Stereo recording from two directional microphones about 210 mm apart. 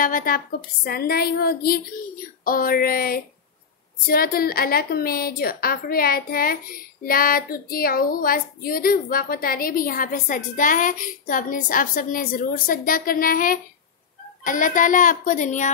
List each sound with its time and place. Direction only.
0.0 s a woman's voice: 40° left (ahead or behind)